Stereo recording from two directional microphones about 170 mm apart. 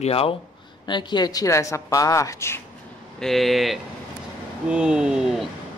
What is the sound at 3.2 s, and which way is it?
Speech, centre (ahead or behind).